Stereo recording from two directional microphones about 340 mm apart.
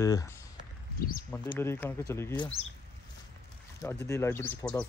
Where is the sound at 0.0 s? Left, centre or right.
Centre.